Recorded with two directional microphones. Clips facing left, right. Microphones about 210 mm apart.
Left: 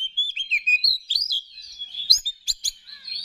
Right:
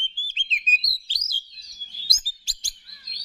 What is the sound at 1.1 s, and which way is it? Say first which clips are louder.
Chirp: even; 25° right (ahead or behind).